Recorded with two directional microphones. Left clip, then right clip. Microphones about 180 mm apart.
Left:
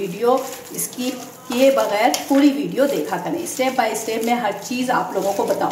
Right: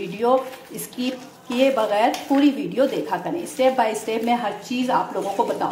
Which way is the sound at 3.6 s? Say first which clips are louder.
Right 1 dB; 40° right (ahead or behind).